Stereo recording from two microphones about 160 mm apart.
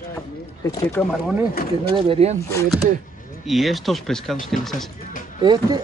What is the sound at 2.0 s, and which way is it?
Speech, 35° right (ahead or behind).